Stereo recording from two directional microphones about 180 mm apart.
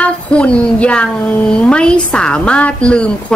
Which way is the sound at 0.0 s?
5° left (ahead or behind).